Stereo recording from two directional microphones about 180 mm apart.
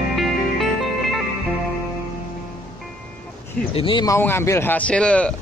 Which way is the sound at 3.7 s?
30° left (ahead or behind).